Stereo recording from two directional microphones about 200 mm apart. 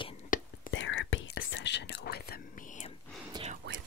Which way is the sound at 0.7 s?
70° left (ahead or behind).